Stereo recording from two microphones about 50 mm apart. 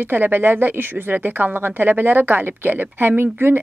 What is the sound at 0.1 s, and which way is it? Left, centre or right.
Speech, right.